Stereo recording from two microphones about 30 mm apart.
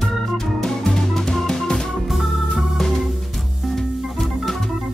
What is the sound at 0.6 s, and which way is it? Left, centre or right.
Music, centre.